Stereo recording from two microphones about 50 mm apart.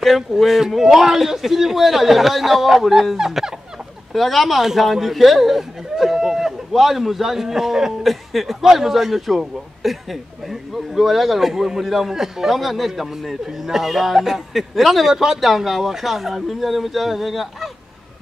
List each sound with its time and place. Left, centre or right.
0.0 s speech: centre